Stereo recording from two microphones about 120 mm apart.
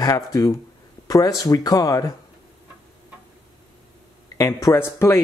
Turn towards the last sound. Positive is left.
turn(degrees=20)  # may be behind; listen again after turning